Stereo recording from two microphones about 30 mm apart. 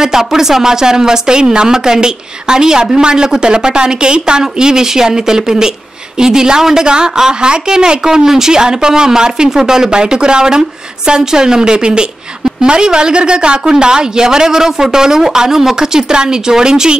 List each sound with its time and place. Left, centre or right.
0.0 s speech: centre